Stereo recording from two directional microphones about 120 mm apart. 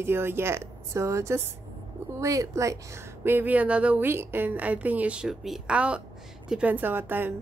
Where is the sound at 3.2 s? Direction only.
15° right (ahead or behind).